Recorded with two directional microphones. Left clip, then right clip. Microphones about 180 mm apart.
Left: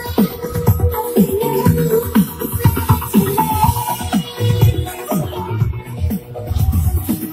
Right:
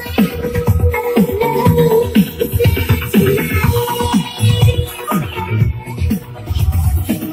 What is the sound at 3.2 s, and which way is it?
Music, 35° left (ahead or behind).